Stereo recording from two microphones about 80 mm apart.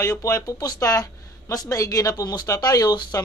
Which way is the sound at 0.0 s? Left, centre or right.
Left.